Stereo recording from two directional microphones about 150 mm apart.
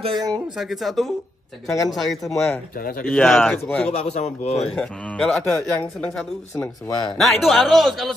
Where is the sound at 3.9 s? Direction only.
50° left (ahead or behind).